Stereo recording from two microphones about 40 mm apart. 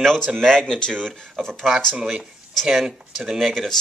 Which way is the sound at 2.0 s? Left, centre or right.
Centre.